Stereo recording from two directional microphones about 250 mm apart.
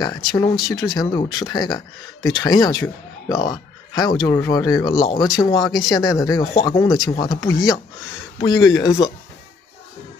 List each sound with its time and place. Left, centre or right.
0.0 s speech: centre